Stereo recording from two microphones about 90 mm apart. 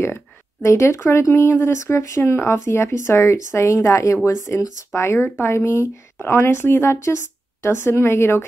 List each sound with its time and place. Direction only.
0.0 s speech: 25° left (ahead or behind)